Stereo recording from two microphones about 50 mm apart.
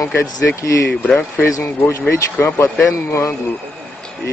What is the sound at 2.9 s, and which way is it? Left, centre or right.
Speech, left.